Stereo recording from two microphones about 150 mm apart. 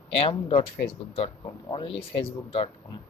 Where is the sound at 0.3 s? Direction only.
35° left (ahead or behind).